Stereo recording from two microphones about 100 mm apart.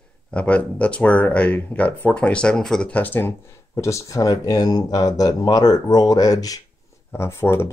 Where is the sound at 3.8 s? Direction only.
30° left (ahead or behind).